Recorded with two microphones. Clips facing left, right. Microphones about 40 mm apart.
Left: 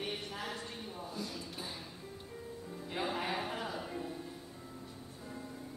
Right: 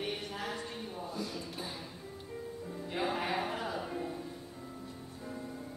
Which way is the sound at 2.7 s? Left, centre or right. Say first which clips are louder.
Right 3 dB; centre.